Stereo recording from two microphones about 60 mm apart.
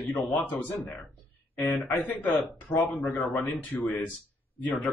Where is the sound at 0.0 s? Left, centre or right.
Left.